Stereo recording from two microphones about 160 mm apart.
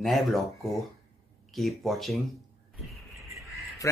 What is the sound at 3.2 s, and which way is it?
Honk, 20° right (ahead or behind).